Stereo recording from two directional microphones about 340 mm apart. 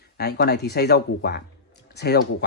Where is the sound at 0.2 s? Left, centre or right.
Left.